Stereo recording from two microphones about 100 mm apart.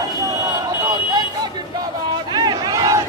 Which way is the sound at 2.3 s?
40° right (ahead or behind).